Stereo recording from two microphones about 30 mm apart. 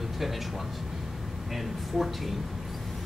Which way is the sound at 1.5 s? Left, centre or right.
Centre.